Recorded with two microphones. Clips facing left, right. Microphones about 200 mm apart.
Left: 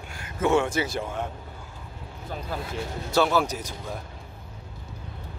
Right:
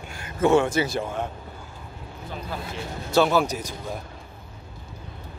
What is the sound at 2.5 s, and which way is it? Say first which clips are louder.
Speech: left 1 dB; 45° left (ahead or behind).